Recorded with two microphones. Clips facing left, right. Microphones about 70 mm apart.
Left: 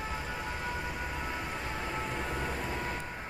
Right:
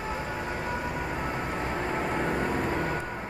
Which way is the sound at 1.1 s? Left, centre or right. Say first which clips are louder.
Right 6 dB; right.